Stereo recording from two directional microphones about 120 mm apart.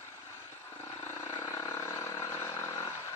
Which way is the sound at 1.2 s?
25° left (ahead or behind).